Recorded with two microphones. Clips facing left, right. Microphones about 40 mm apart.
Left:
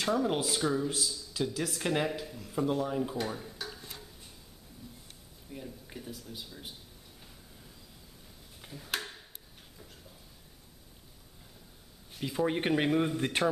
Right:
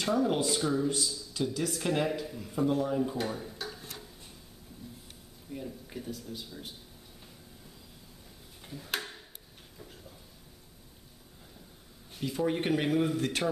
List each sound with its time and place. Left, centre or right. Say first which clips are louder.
0.0 s speech: right 1 dB; centre
2.0 s speech: right 2 dB; centre
3.2 s a sound: right 1 dB; centre
5.5 s speech: right 4 dB; centre
8.5 s tick-tock: right 1 dB; centre
12.2 s speech: even; centre